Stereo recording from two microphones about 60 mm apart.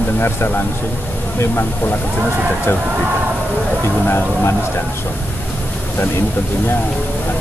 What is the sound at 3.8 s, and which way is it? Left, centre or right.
Speech, left.